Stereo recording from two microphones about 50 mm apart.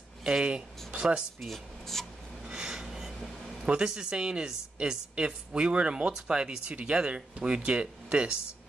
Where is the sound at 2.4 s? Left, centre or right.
Centre.